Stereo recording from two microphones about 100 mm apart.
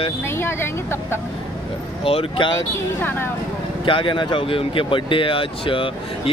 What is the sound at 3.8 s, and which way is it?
Speech, 55° left (ahead or behind).